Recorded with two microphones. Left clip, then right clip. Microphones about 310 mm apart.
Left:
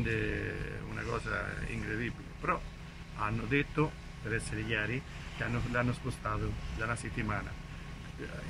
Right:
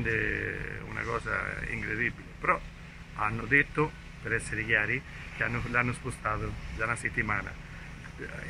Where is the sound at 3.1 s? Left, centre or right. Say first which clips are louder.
Right 7 dB; centre.